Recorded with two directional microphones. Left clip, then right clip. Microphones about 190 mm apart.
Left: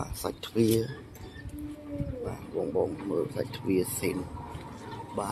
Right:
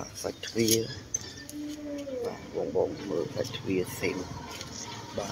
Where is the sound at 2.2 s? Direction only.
5° left (ahead or behind).